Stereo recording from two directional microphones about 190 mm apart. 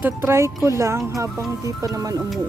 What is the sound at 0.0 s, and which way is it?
Speech, 15° right (ahead or behind).